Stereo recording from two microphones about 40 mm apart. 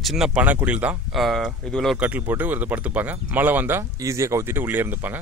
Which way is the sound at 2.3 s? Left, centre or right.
Right.